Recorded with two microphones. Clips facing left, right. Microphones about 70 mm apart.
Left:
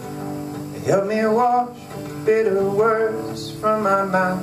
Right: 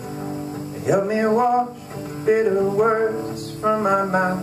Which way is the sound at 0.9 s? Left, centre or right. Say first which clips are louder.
Left 1 dB; centre.